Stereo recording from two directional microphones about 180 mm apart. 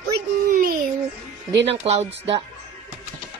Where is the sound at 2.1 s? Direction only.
85° right.